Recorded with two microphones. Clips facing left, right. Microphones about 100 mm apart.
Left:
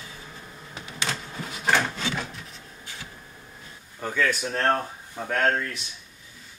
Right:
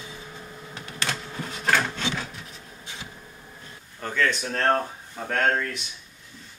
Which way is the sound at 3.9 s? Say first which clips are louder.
Even; 10° left (ahead or behind).